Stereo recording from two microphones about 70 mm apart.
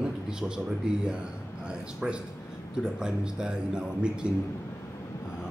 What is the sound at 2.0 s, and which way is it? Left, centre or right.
A man's voice, centre.